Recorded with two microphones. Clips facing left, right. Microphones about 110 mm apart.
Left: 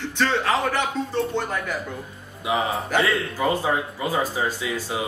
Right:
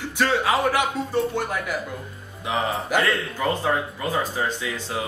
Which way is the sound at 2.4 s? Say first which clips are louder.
Left 1 dB; 5° left (ahead or behind).